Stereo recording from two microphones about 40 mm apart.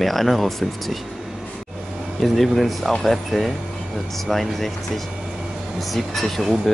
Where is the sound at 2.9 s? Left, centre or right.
Centre.